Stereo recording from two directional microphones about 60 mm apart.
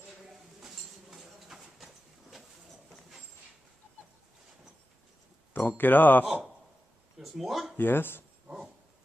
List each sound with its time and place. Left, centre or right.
0.6 s a sound: centre
5.5 s speech: left
7.2 s speech: centre
7.7 s speech: left